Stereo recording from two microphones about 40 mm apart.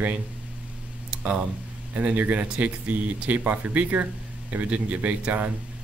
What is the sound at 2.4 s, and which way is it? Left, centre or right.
Speech, right.